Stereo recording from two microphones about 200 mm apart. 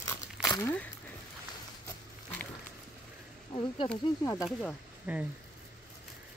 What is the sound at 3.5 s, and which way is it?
Speech, 25° left (ahead or behind).